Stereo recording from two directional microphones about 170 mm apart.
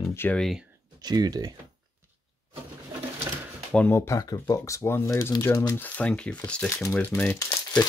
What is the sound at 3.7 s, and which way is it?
Speech, 10° left (ahead or behind).